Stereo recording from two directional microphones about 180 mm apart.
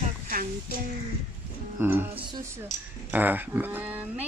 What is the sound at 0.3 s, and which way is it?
Speech, 50° right (ahead or behind).